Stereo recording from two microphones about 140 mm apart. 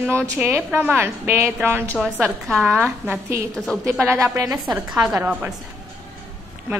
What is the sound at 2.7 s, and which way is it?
A woman's voice, 15° right (ahead or behind).